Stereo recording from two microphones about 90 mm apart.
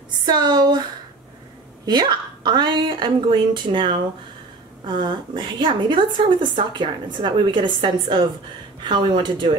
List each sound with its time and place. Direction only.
0.2 s speech: 50° right (ahead or behind)
1.9 s a woman's voice: 50° right (ahead or behind)